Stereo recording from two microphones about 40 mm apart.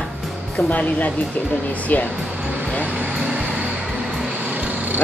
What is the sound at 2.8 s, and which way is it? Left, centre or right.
Vehicle, right.